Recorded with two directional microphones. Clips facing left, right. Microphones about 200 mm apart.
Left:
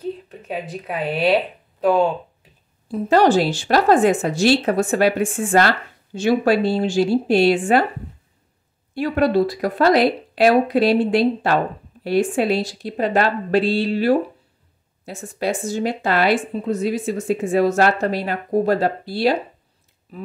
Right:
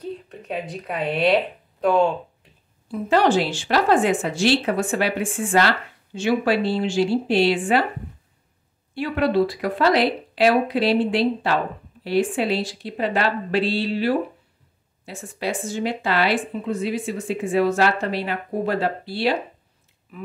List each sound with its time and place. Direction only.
0.3 s speech: 5° left (ahead or behind)
2.9 s a woman's voice: 40° left (ahead or behind)
8.9 s speech: 45° left (ahead or behind)